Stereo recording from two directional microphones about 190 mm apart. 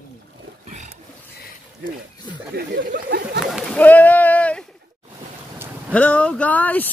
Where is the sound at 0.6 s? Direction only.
40° right (ahead or behind).